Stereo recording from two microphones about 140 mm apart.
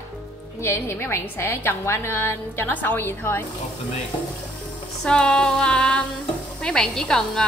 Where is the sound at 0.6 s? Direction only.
20° left (ahead or behind).